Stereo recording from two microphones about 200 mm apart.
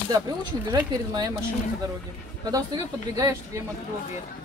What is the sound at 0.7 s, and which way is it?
Speech, 20° right (ahead or behind).